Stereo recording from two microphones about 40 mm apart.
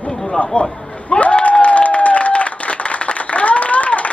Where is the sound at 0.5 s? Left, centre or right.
Left.